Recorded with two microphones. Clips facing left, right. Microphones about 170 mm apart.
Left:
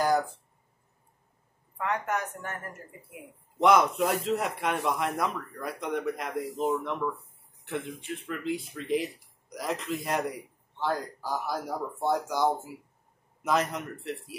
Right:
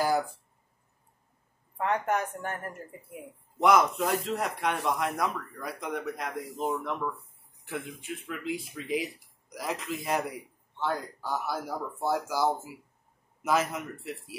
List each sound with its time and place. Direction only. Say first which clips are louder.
0.0 s a sound: left 1 dB; 10° right (ahead or behind)
1.8 s speech: right 2 dB; 30° right (ahead or behind)
3.5 s a man's voice: left 1 dB; centre (ahead or behind)